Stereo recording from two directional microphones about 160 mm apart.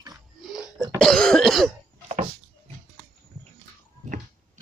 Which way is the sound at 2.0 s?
40° right (ahead or behind).